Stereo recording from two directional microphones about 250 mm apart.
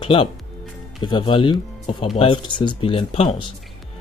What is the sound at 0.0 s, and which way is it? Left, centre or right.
Speech, left.